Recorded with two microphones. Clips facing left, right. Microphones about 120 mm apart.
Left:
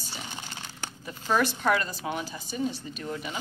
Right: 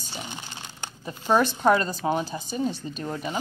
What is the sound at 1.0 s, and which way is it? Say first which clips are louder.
Speech: right 4 dB; 30° right (ahead or behind).